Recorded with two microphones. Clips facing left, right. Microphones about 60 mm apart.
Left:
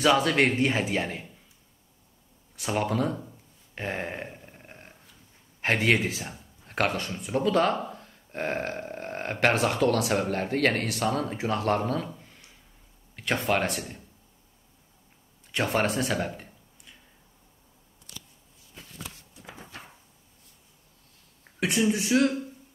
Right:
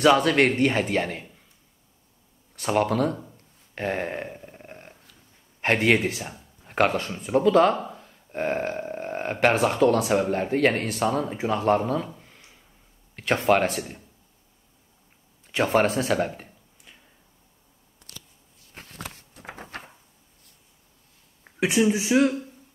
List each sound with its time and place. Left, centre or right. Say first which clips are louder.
0.0 s speech: right 4 dB; centre
2.7 s speech: right 4 dB; centre
3.7 s a sound: right 5 dB; centre
5.6 s speech: right 3 dB; centre
6.6 s speech: right 5 dB; centre
15.5 s speech: right 5 dB; centre
16.2 s a sound: right 5 dB; centre
18.8 s a sound: right 4 dB; right
21.5 s speech: right 4 dB; centre